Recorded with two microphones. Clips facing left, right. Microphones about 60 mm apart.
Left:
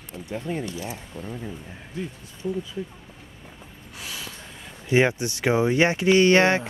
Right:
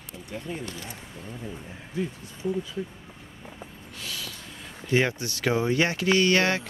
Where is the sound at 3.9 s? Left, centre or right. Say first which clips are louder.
Left 1 dB; left.